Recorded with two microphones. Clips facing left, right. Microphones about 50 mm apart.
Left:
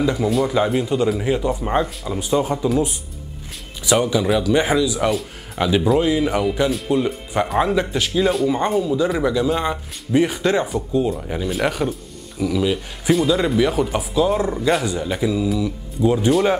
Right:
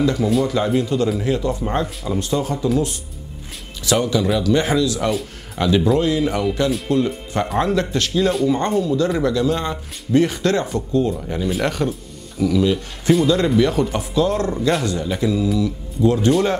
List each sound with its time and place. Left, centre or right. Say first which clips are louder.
0.0 s speech: right 1 dB; centre
3.8 s speech: left 1 dB; centre